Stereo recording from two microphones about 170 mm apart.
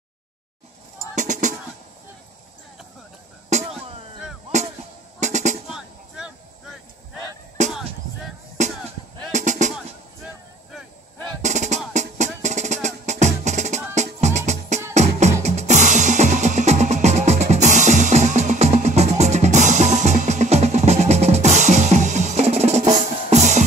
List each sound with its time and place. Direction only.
1.1 s drum: 45° right (ahead or behind)
3.4 s music: 45° right (ahead or behind)
5.2 s drum: 45° right (ahead or behind)
5.7 s a sound: 5° right (ahead or behind)
7.6 s music: 45° right (ahead or behind)
9.3 s drum: 45° right (ahead or behind)
11.4 s drum: 45° right (ahead or behind)
11.9 s music: 45° right (ahead or behind)